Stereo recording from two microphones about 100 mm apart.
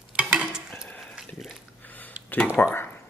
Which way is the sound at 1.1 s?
5° right (ahead or behind).